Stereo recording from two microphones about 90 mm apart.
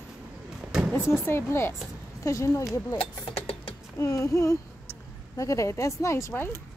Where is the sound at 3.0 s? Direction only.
90° left.